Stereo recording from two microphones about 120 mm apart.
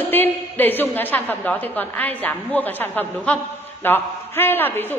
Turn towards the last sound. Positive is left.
turn(degrees=15)  # may be behind; listen again after turning